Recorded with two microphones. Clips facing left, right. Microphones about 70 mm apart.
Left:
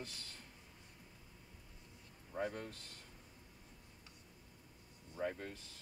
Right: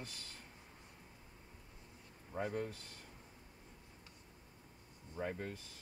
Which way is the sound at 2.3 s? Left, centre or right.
Centre.